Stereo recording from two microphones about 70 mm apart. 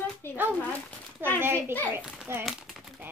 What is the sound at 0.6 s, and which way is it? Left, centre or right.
Speech, left.